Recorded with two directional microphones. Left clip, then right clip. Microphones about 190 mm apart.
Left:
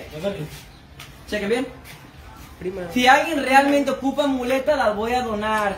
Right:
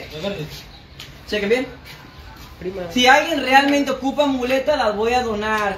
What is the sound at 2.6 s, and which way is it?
Speech, 20° left (ahead or behind).